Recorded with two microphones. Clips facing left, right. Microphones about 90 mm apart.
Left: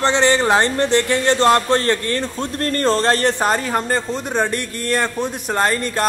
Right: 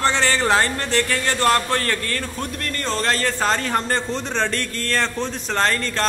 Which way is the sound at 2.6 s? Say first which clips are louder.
Left 7 dB; 40° left (ahead or behind).